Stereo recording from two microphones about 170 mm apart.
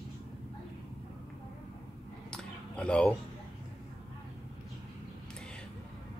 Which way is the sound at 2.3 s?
5° left (ahead or behind).